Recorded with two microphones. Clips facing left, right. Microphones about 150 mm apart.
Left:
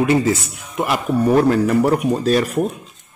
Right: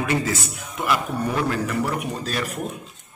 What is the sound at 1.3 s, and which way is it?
Speech, 40° left (ahead or behind).